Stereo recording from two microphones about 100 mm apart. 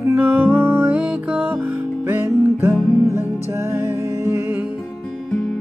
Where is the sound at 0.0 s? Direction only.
20° right (ahead or behind).